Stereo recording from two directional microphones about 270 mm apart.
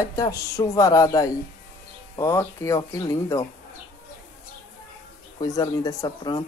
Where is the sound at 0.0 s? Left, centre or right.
Centre.